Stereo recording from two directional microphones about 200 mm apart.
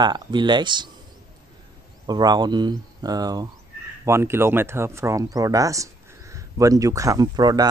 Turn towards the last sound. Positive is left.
turn(degrees=-20)  # may be behind; listen again after turning